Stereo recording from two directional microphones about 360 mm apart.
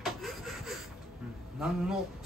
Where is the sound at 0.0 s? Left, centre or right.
Centre.